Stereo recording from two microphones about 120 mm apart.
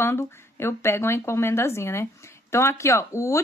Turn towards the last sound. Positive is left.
turn(degrees=25)  # may be behind; listen again after turning